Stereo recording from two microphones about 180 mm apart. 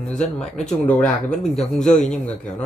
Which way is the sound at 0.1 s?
5° left (ahead or behind).